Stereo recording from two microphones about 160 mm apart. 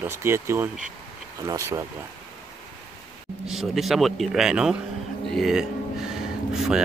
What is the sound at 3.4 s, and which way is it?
A man's voice, centre (ahead or behind).